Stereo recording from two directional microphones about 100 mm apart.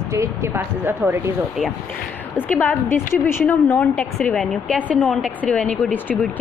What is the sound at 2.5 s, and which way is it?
A woman's voice, 20° left (ahead or behind).